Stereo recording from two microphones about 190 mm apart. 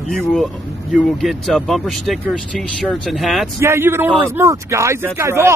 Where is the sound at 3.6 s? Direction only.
15° right (ahead or behind).